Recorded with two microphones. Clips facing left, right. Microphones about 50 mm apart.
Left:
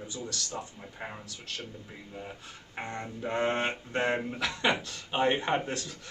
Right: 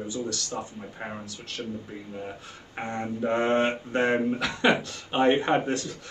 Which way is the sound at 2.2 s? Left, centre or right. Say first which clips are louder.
Right 5 dB; centre.